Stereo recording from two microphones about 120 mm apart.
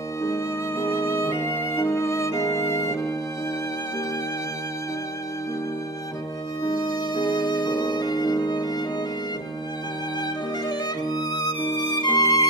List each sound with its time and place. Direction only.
0.2 s music: 25° left (ahead or behind)
6.6 s music: 35° left (ahead or behind)
10.7 s music: 35° left (ahead or behind)